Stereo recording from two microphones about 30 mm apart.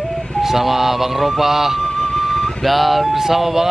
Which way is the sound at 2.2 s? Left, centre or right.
Centre.